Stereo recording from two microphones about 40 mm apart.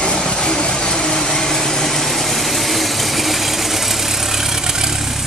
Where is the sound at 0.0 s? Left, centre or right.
Left.